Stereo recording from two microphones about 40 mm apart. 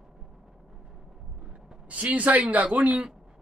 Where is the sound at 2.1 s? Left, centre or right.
Right.